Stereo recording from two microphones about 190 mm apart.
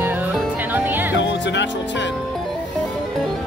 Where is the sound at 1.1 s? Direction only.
70° left (ahead or behind).